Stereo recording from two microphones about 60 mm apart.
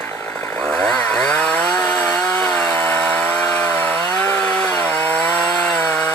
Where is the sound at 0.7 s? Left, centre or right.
Centre.